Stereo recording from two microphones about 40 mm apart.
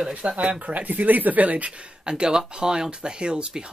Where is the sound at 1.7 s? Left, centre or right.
Right.